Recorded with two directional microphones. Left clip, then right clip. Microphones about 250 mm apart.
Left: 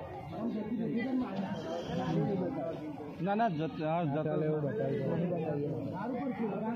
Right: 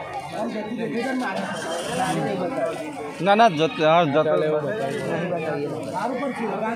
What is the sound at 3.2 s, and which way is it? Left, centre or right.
A man's voice, right.